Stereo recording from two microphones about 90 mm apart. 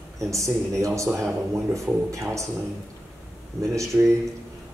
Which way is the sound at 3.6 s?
35° right (ahead or behind).